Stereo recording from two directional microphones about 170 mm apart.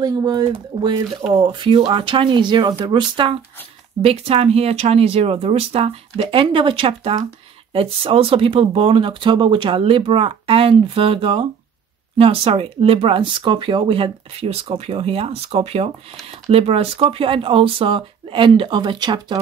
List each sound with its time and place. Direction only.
0.0 s speech: 25° right (ahead or behind)